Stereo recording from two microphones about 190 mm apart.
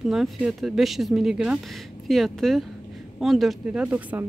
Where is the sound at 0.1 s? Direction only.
Centre (ahead or behind).